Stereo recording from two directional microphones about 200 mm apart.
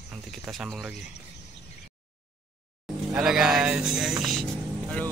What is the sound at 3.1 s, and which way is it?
Speech, 5° right (ahead or behind).